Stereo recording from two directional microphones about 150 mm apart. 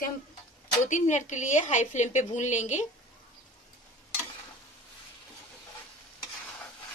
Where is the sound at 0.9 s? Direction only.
55° left (ahead or behind).